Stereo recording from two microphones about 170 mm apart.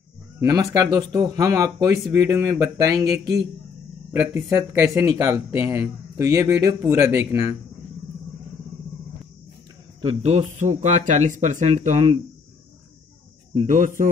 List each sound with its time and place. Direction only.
0.4 s speech: 20° right (ahead or behind)
10.0 s speech: 40° right (ahead or behind)
13.7 s speech: 50° right (ahead or behind)